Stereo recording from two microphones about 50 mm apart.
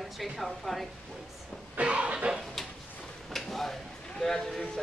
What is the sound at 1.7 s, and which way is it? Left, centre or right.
Cough, right.